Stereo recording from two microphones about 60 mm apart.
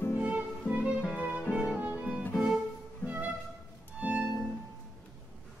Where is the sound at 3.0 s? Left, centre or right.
Right.